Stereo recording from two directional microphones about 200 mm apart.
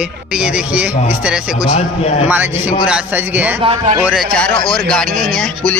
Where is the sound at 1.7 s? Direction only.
35° left (ahead or behind).